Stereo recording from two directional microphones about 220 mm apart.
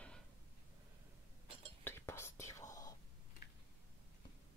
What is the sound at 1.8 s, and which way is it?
Whispering, 10° left (ahead or behind).